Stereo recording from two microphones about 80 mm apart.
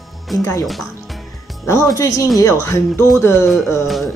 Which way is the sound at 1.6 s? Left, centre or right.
Left.